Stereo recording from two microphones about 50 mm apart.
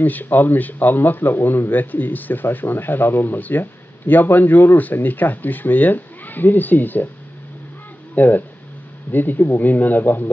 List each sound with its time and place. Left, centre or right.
0.0 s speech: left
8.1 s speech: left